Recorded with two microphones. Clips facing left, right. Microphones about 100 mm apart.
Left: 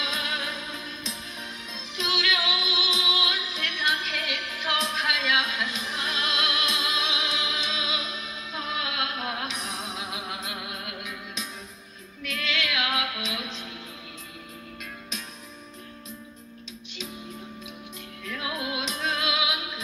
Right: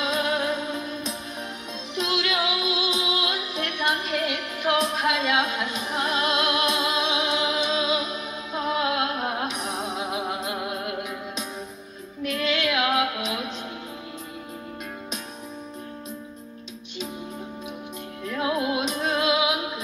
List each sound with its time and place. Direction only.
0.0 s music: 45° right (ahead or behind)
18.2 s music: 35° right (ahead or behind)